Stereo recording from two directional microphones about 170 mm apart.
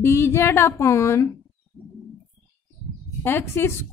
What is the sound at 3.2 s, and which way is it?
Speech, 15° left (ahead or behind).